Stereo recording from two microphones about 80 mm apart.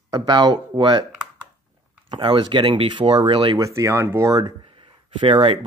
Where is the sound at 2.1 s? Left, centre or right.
Right.